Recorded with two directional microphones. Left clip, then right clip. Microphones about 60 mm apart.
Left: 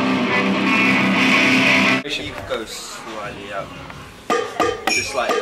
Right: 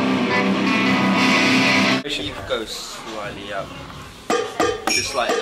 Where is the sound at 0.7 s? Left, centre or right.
Right.